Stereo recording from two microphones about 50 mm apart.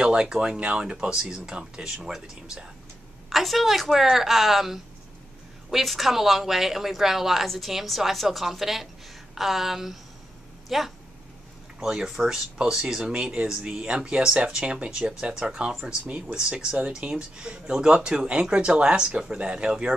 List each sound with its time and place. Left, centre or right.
0.0 s speech: centre
3.3 s a woman's voice: centre